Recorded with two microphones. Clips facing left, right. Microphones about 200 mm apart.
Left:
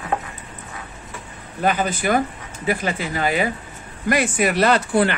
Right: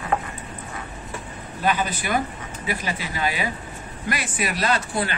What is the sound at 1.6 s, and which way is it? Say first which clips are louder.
Speech: left 4 dB; 50° left (ahead or behind).